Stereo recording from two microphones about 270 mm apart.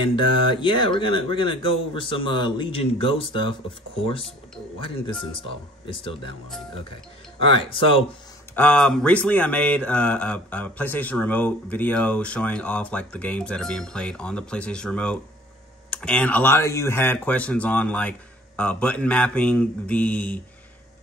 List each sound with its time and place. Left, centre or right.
0.0 s speech: centre
4.7 s speech: centre
7.3 s speech: centre
8.5 s speech: centre